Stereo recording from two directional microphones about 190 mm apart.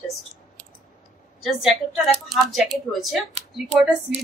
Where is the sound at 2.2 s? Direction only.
Centre (ahead or behind).